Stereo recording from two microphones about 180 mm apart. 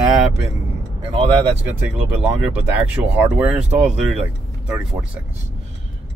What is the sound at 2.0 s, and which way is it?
Speech, 5° right (ahead or behind).